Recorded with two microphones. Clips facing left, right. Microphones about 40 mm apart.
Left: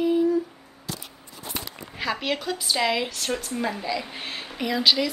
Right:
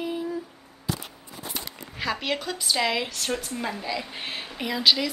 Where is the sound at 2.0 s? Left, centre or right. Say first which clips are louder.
Left 1 dB; centre.